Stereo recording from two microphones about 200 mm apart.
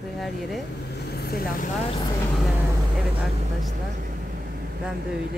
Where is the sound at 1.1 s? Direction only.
50° left (ahead or behind).